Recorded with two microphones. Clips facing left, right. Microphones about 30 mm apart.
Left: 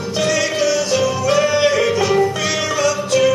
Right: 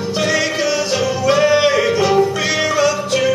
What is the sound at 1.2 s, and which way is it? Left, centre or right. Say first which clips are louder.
Music: right 4 dB; centre.